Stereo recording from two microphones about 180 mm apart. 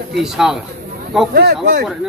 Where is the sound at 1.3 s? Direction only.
60° right (ahead or behind).